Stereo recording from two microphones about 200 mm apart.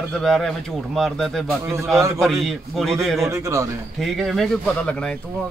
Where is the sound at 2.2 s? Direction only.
Centre (ahead or behind).